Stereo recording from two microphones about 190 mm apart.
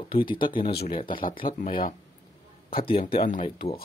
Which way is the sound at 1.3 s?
45° left (ahead or behind).